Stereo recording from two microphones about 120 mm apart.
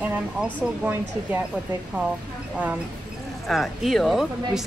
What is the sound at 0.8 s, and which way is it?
Speech, 15° right (ahead or behind).